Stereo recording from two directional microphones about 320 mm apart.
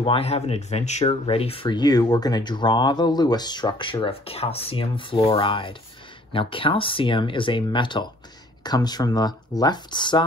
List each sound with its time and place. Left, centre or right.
0.0 s speech: centre